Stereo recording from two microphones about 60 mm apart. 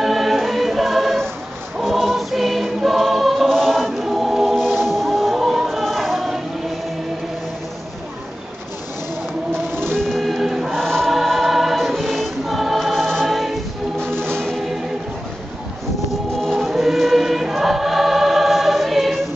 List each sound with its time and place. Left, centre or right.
0.0 s choir: centre
4.6 s music: centre
9.5 s a sound: right
10.0 s music: centre
10.7 s choir: centre
14.0 s music: right
14.3 s music: centre
16.3 s choir: centre